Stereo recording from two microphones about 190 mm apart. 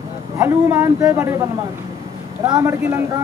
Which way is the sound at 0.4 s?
15° right (ahead or behind).